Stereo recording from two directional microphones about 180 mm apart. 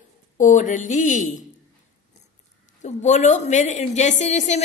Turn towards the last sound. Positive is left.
turn(degrees=40)  # may be behind; listen again after turning